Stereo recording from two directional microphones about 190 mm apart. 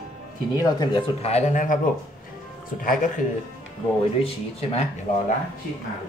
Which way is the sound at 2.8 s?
45° left (ahead or behind).